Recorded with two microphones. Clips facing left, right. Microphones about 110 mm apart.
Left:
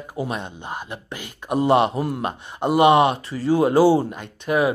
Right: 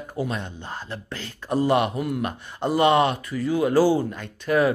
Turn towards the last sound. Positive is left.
turn(degrees=15)  # may be behind; listen again after turning